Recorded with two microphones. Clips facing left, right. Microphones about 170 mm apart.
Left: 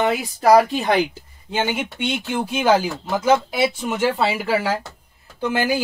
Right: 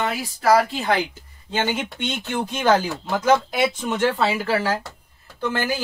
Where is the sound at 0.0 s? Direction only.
20° left (ahead or behind).